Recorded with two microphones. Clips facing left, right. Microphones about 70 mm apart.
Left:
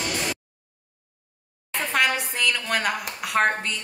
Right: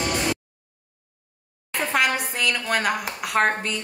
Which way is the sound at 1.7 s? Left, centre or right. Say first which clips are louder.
Right 1 dB; centre.